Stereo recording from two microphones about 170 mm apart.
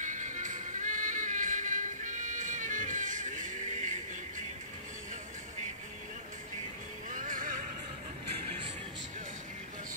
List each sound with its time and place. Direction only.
0.0 s music: 50° right (ahead or behind)
7.1 s music: 50° right (ahead or behind)